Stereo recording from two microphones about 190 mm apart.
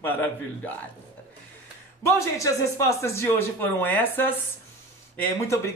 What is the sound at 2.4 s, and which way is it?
Speech, 15° left (ahead or behind).